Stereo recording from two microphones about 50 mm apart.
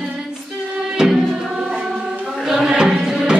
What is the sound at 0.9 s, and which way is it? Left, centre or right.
Music, centre.